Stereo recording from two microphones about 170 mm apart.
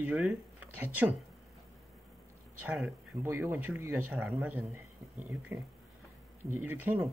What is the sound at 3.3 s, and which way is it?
Speech, 15° right (ahead or behind).